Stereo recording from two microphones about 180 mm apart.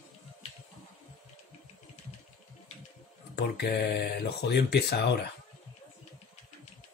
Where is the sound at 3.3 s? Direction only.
60° left (ahead or behind).